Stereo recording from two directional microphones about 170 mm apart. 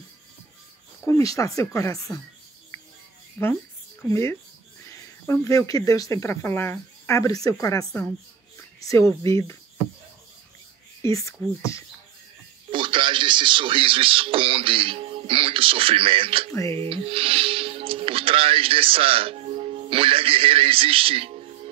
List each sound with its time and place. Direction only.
1.0 s speech: 20° left (ahead or behind)
4.1 s speech: 15° left (ahead or behind)
9.2 s speech: 20° left (ahead or behind)
11.0 s speech: 20° left (ahead or behind)
12.7 s speech: 30° right (ahead or behind)
16.5 s speech: 15° left (ahead or behind)
16.8 s speech: 35° right (ahead or behind)